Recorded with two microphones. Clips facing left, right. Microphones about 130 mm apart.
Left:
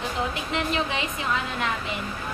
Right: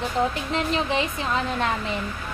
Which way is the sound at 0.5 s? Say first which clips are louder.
Right 1 dB; 35° right (ahead or behind).